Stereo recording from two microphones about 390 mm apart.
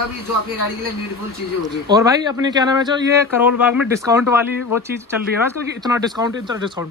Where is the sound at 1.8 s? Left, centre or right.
Centre.